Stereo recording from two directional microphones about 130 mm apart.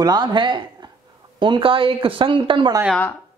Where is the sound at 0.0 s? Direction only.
35° right (ahead or behind).